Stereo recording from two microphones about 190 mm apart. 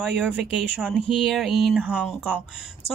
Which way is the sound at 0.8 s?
Centre (ahead or behind).